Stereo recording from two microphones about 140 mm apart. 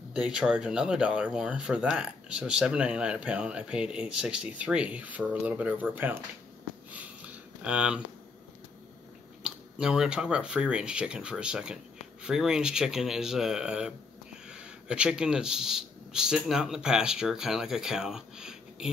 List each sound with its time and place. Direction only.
0.1 s speech: 5° right (ahead or behind)
6.9 s a sound: 10° right (ahead or behind)
9.4 s speech: 5° right (ahead or behind)